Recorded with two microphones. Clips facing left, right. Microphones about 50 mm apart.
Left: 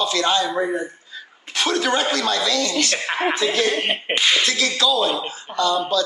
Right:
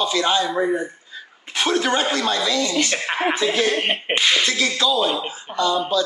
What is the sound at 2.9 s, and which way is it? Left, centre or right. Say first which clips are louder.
Speech: even; centre.